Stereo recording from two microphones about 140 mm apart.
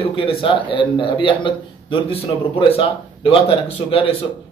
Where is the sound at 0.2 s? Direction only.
40° left (ahead or behind).